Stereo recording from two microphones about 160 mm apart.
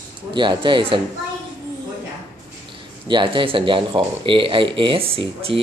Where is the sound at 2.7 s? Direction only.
30° right (ahead or behind).